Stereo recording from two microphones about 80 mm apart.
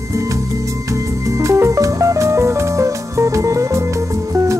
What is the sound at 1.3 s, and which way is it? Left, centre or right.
Music, right.